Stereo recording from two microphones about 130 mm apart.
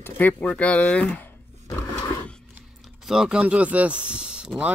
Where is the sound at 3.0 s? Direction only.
5° right (ahead or behind).